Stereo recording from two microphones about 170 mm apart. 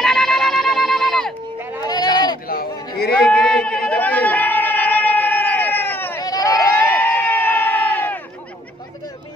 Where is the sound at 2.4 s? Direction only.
60° left (ahead or behind).